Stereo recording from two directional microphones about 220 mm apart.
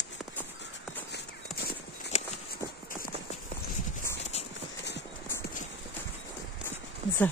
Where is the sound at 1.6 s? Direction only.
40° left (ahead or behind).